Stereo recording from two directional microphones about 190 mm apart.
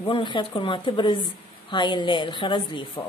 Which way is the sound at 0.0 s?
25° left (ahead or behind).